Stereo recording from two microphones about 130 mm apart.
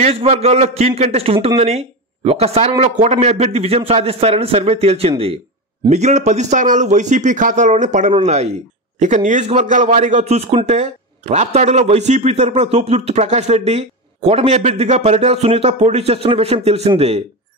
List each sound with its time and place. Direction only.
0.0 s a man's voice: 50° right (ahead or behind)
5.9 s a man's voice: 60° right (ahead or behind)
9.0 s a man's voice: 70° right (ahead or behind); by 16.9 s 55° right (ahead or behind)